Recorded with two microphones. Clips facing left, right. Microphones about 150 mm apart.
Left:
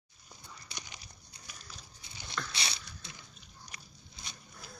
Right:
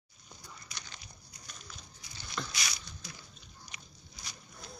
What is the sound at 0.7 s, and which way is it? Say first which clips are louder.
Dog: left 3 dB; 15° left (ahead or behind).